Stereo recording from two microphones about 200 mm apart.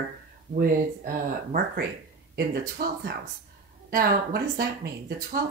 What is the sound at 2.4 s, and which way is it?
A woman's voice, 50° right (ahead or behind).